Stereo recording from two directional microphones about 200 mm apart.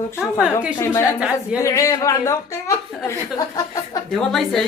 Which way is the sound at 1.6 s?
15° left (ahead or behind).